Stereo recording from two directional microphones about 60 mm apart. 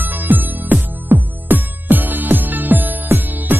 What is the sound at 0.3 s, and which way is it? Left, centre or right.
Music, right.